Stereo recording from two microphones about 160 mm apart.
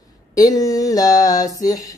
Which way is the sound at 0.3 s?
20° left (ahead or behind).